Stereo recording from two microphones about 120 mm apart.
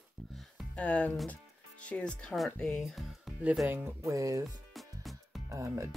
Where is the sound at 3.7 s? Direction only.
20° right (ahead or behind).